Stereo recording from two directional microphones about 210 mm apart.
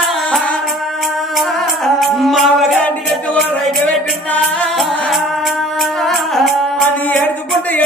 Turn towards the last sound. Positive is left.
turn(degrees=0)  # may be behind; listen again after turning